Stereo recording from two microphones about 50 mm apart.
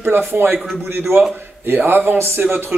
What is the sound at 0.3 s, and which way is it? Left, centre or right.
A man's voice, right.